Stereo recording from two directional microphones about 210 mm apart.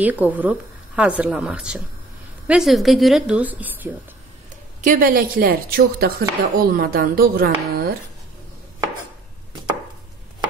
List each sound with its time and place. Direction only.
0.0 s speech: 5° right (ahead or behind)
4.8 s speech: 40° right (ahead or behind)